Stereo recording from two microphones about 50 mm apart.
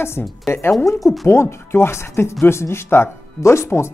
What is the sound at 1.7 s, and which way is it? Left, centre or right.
Speech, left.